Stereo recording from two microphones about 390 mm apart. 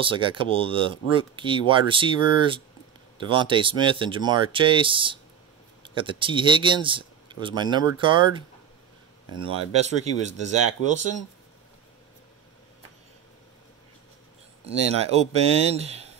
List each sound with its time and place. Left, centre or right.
0.0 s speech: centre
14.7 s speech: centre